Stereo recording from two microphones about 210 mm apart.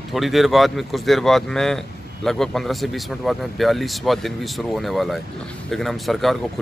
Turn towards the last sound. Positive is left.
turn(degrees=0)  # may be behind; listen again after turning